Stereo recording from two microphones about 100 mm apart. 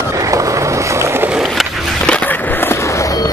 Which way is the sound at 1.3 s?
5° right (ahead or behind).